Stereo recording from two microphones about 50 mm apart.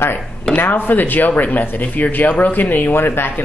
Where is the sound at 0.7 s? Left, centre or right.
Left.